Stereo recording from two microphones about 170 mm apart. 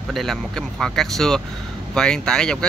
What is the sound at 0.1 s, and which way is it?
Speech, centre (ahead or behind).